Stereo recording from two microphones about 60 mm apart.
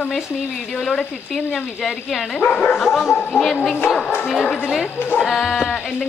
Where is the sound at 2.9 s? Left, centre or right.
Centre.